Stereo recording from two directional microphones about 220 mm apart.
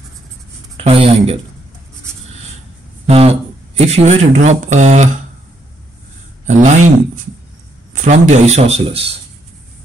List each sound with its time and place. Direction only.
0.7 s speech: 25° right (ahead or behind)
3.1 s speech: 25° right (ahead or behind)
6.4 s speech: 35° right (ahead or behind)
7.9 s a man's voice: 35° right (ahead or behind)